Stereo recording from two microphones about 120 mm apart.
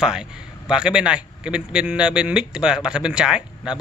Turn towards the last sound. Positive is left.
turn(degrees=-5)  # may be behind; listen again after turning